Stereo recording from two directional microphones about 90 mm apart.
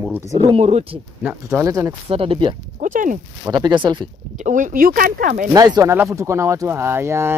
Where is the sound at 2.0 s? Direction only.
90° right.